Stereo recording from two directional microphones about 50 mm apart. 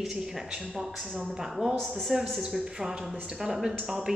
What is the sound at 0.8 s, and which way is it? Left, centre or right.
Speech, centre.